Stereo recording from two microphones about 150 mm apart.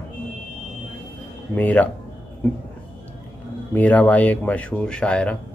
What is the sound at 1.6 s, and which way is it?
Speech, 10° left (ahead or behind).